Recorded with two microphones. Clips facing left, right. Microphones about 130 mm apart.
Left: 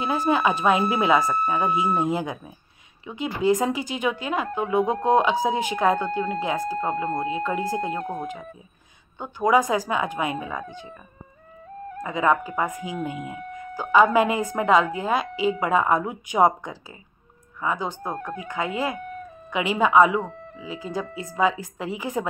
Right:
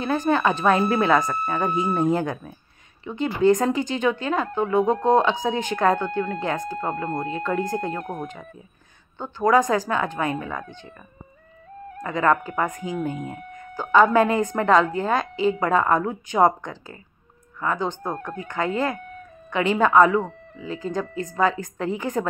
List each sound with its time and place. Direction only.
0.0 s a woman's voice: 10° left (ahead or behind)
8.0 s speech: 30° left (ahead or behind)
9.2 s a woman's voice: 10° left (ahead or behind)
12.0 s a woman's voice: 10° left (ahead or behind)
13.1 s speech: 40° right (ahead or behind)
13.7 s a woman's voice: 10° left (ahead or behind)